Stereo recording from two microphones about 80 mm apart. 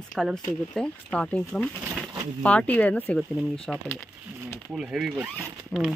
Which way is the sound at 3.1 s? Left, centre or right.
Centre.